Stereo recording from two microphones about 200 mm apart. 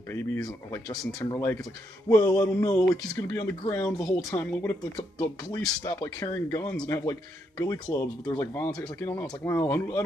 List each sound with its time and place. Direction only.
0.1 s speech: 10° left (ahead or behind)